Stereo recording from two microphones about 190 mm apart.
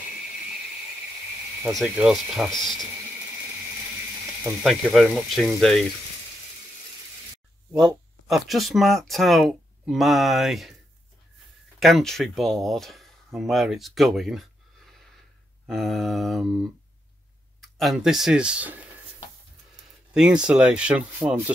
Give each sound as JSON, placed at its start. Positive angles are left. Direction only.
{"t": 1.6, "sound": "speech", "side_deg": 0}
{"t": 4.6, "sound": "speech", "side_deg": 0}
{"t": 8.3, "sound": "speech", "side_deg": 0}
{"t": 11.8, "sound": "speech", "side_deg": 0}
{"t": 15.6, "sound": "speech", "side_deg": 0}
{"t": 20.2, "sound": "speech", "side_deg": -5}